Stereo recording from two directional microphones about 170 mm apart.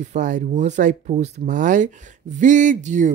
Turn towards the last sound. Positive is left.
turn(degrees=-45)  # may be behind; listen again after turning